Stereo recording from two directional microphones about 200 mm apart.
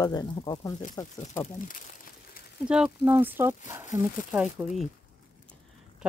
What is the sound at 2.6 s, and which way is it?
Speech, 5° right (ahead or behind).